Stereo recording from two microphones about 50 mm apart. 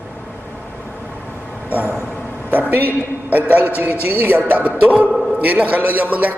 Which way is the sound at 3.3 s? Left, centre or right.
Right.